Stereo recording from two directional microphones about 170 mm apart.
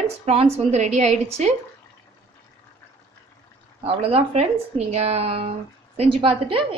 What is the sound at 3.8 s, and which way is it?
A woman's voice, 35° right (ahead or behind).